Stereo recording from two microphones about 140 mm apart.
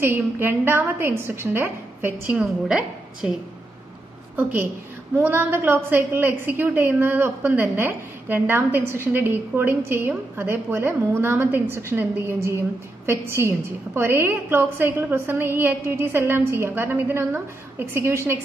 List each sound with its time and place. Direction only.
0.0 s a woman's voice: 15° right (ahead or behind)
4.4 s a woman's voice: 15° right (ahead or behind)